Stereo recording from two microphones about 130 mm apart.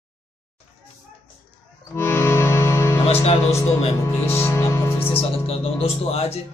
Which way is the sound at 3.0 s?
50° left (ahead or behind).